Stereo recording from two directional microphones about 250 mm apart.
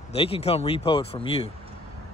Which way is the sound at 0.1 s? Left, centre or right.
Left.